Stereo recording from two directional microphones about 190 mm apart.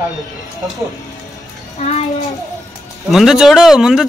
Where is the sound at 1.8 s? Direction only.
35° left (ahead or behind).